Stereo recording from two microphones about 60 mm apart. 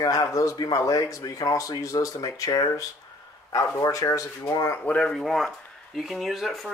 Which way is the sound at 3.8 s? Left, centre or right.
Left.